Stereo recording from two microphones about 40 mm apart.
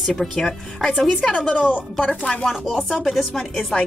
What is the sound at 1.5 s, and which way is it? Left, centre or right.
Speech, left.